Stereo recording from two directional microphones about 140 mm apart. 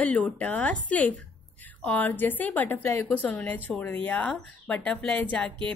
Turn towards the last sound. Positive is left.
turn(degrees=10)  # may be behind; listen again after turning